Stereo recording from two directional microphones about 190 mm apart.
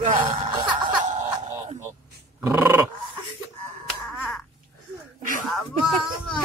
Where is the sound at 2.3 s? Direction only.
15° right (ahead or behind).